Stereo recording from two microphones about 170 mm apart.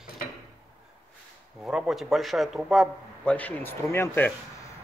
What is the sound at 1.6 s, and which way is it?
A man's voice, 5° right (ahead or behind).